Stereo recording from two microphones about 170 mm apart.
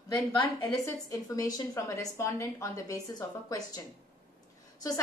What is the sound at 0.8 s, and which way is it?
A woman's voice, 20° left (ahead or behind).